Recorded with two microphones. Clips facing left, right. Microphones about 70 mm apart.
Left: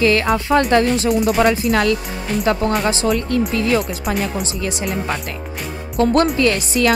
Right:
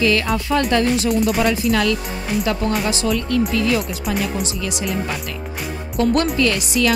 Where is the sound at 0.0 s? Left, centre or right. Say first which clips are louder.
Left 3 dB; left.